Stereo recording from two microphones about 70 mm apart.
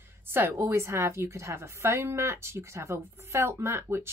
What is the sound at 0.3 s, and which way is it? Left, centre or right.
A woman's voice, right.